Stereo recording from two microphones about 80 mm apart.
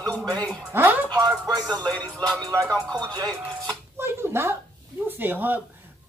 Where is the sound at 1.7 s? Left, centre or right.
Centre.